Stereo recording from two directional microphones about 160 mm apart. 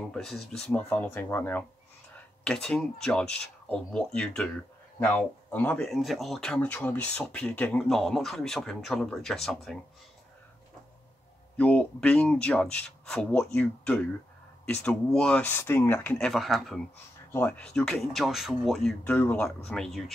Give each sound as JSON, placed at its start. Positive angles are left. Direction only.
{"t": 0.1, "sound": "speech", "side_deg": 0}
{"t": 5.9, "sound": "speech", "side_deg": 0}
{"t": 11.5, "sound": "speech", "side_deg": 10}
{"t": 17.3, "sound": "speech", "side_deg": 10}